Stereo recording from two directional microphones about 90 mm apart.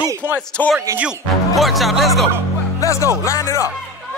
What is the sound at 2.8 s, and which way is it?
Speech, 35° left (ahead or behind).